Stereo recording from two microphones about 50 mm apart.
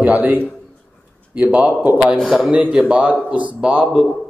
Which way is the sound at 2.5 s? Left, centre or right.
Right.